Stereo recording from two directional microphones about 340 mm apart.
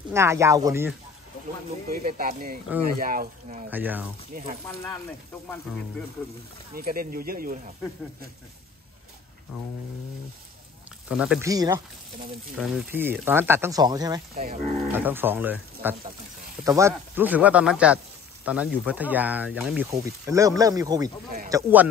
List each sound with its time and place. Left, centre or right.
0.1 s speech: centre
1.9 s speech: right
3.7 s speech: centre
6.7 s speech: right
11.1 s speech: centre
14.3 s speech: right
14.9 s speech: centre